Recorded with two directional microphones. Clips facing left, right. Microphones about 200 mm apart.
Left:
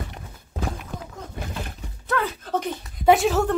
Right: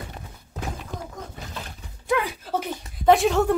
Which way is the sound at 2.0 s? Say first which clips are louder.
Right 1 dB; 15° right (ahead or behind).